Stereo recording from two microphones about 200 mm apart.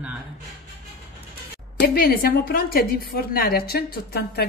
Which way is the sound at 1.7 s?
50° left (ahead or behind).